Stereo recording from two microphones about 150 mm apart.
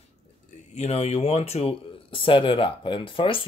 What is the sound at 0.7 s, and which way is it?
Speech, 45° left (ahead or behind).